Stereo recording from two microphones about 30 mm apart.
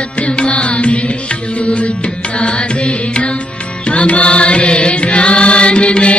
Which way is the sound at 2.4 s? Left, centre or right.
Left.